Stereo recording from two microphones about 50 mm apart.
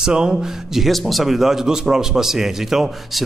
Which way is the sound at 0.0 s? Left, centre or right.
Centre.